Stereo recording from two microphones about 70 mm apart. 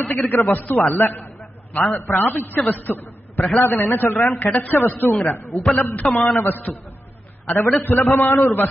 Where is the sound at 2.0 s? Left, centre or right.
Left.